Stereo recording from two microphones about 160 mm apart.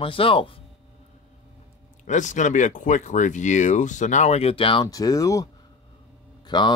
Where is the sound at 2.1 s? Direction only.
50° left (ahead or behind); by 6.7 s 25° left (ahead or behind).